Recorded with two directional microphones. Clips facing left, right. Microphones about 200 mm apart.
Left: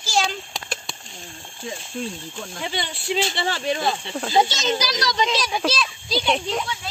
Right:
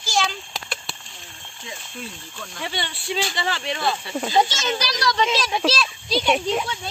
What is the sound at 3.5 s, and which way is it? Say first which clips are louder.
Speech: left 5 dB; 40° left (ahead or behind).